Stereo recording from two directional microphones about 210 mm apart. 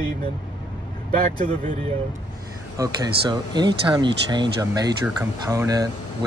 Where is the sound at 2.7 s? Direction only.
15° right (ahead or behind).